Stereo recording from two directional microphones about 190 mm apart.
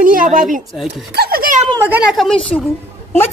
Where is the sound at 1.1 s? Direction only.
55° right (ahead or behind).